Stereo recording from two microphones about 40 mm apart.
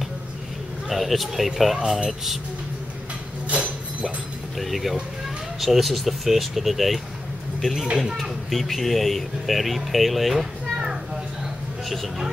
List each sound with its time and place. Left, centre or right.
0.8 s speech: centre
3.4 s a sound: right
4.6 s speech: centre